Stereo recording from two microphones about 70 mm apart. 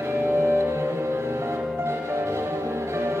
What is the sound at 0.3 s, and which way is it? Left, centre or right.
Music, right.